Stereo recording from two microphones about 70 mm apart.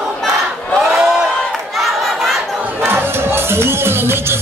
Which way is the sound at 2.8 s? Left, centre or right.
Right.